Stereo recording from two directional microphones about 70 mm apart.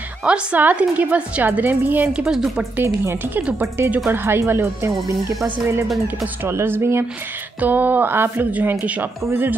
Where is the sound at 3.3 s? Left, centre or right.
Right.